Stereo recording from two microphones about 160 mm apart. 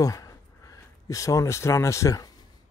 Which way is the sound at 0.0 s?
20° left (ahead or behind).